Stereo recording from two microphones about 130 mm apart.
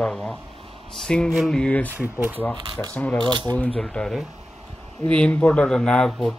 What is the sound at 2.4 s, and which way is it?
Speech, 10° left (ahead or behind).